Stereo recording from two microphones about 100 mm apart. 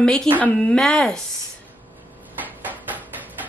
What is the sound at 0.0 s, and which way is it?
Speech, 5° left (ahead or behind).